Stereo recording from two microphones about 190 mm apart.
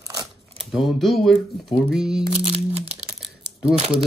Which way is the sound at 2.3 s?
35° right (ahead or behind).